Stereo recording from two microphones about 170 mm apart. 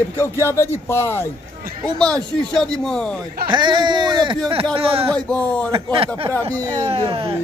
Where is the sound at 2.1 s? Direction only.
5° left (ahead or behind).